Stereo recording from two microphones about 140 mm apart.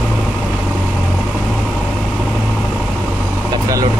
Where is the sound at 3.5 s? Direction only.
25° right (ahead or behind).